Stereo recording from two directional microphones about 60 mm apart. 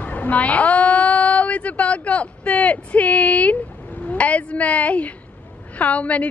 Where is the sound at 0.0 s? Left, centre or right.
Left.